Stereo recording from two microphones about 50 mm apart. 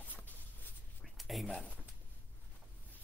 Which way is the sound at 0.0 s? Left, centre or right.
Left.